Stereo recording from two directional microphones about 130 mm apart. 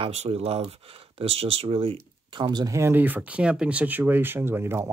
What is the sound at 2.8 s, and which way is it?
Speech, 15° right (ahead or behind).